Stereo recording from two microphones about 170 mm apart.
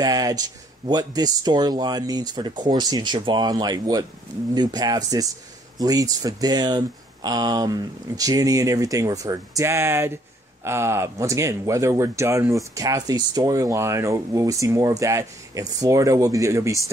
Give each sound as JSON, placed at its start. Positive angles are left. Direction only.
{"t": 0.0, "sound": "speech", "side_deg": -20}